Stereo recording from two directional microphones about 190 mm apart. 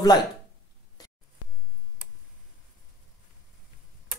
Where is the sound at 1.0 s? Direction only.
20° left (ahead or behind).